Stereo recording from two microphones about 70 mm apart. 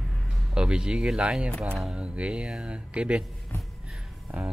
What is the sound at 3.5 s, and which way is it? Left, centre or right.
Music, left.